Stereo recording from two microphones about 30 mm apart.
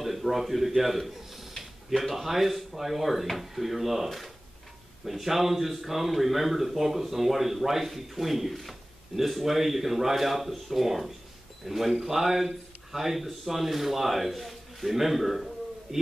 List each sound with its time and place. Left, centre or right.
0.0 s a man's voice: centre
15.9 s a man's voice: centre